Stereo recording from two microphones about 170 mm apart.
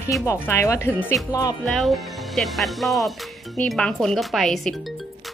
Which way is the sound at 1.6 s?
Centre (ahead or behind).